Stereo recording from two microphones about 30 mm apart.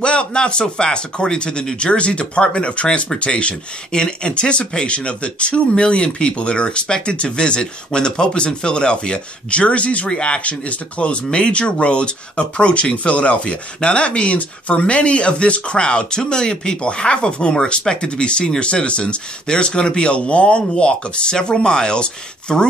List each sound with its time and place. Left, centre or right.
0.0 s speech: left
3.9 s speech: left
10.0 s speech: left
10.4 s speech: left